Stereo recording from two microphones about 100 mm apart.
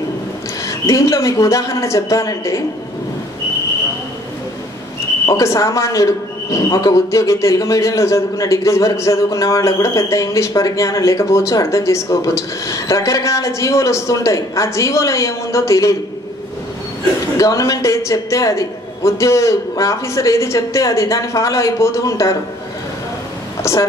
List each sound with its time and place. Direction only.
0.7 s a man's voice: 30° left (ahead or behind)
5.2 s a man's voice: 30° left (ahead or behind)
17.4 s a man's voice: 35° left (ahead or behind)
23.6 s speech: 30° left (ahead or behind)